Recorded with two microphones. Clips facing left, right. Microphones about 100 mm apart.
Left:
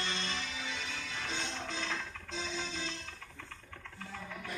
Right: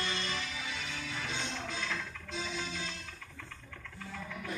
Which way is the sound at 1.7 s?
25° left (ahead or behind).